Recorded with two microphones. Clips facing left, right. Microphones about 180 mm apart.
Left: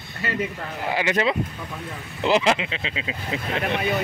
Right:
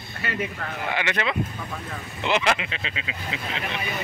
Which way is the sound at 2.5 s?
25° left (ahead or behind).